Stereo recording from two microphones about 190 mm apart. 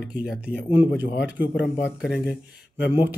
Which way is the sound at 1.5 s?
65° left (ahead or behind).